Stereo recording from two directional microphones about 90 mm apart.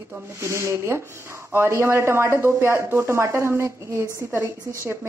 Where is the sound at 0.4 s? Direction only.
30° right (ahead or behind).